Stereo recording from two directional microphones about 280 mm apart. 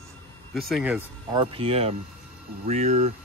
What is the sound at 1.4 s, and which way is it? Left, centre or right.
Speech, centre.